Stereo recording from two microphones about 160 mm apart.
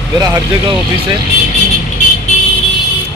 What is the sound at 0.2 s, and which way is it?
Speech, 25° right (ahead or behind).